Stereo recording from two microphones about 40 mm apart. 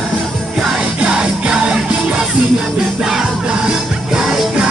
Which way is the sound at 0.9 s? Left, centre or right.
Right.